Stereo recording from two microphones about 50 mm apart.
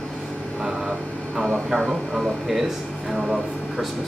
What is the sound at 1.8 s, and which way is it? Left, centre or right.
Speech, centre.